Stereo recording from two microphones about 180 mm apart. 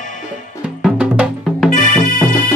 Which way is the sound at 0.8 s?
5° right (ahead or behind).